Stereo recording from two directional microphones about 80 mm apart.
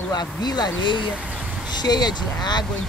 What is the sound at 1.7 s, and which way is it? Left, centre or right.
Speech, left.